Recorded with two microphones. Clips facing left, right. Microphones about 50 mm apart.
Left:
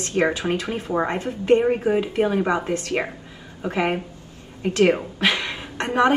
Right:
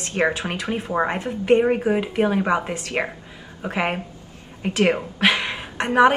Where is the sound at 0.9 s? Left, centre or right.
Centre; by 5.3 s right.